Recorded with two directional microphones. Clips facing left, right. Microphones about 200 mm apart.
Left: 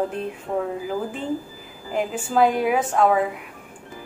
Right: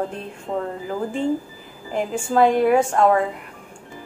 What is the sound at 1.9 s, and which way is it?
Speech, 5° left (ahead or behind).